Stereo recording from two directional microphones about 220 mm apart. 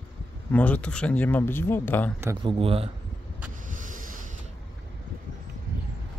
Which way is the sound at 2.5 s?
25° right (ahead or behind).